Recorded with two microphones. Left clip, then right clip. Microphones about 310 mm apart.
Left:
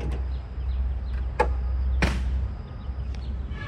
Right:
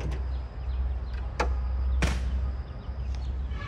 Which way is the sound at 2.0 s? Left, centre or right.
Left.